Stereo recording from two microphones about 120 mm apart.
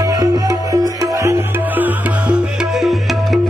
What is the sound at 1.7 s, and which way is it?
Music, 15° right (ahead or behind).